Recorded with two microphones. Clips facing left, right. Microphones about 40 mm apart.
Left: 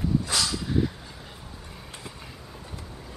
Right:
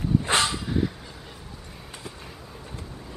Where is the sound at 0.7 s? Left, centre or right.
Centre.